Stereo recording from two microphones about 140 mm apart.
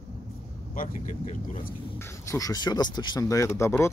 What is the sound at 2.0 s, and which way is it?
Speech, 20° left (ahead or behind).